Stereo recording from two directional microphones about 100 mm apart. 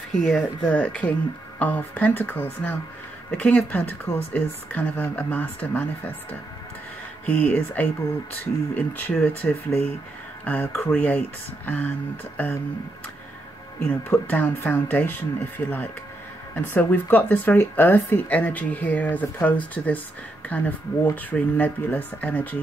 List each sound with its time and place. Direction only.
0.1 s speech: 5° left (ahead or behind)
7.2 s speech: 15° left (ahead or behind)
13.8 s speech: 20° left (ahead or behind)